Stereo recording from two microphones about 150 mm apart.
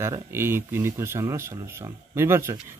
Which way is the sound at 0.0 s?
15° right (ahead or behind).